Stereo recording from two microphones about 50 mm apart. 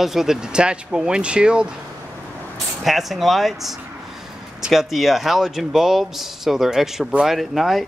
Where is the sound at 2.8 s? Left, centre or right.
Centre.